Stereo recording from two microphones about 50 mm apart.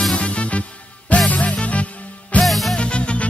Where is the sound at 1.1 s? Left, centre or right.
Left.